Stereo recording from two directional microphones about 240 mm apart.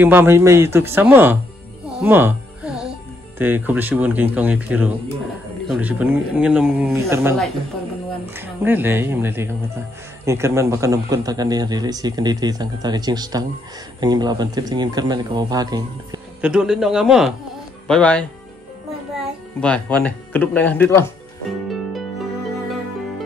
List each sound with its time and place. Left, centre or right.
0.0 s a man's voice: centre
2.0 s music: centre
3.3 s a man's voice: centre
8.4 s a man's voice: centre
16.3 s speech: centre
19.6 s speech: centre
21.5 s harp: centre